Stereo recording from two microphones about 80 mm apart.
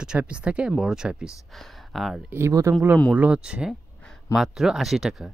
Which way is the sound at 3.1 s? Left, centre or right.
Centre.